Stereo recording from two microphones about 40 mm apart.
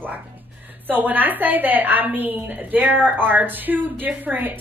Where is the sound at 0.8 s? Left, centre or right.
Right.